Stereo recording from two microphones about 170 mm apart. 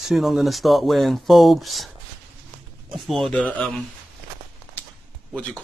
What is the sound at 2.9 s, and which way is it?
Speech, centre (ahead or behind).